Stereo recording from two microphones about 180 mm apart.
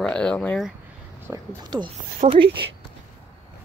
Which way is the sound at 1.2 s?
20° right (ahead or behind).